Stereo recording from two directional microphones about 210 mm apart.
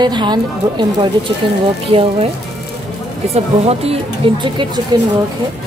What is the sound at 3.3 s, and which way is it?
Speech, 30° right (ahead or behind).